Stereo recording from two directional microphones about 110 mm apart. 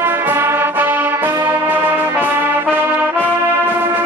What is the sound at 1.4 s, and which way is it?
Music, 15° right (ahead or behind).